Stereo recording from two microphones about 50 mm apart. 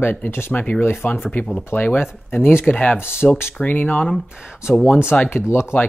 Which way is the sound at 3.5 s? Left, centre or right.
Left.